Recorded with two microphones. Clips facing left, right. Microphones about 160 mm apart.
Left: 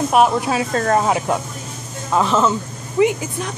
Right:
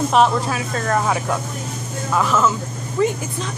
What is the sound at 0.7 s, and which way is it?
Speech, 30° left (ahead or behind).